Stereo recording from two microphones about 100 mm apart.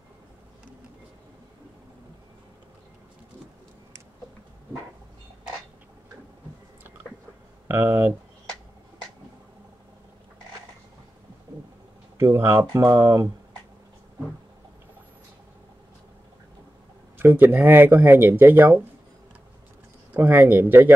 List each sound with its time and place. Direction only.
7.6 s speech: 25° right (ahead or behind)
12.2 s speech: 25° right (ahead or behind)
17.2 s speech: 20° right (ahead or behind)
20.2 s speech: 20° right (ahead or behind)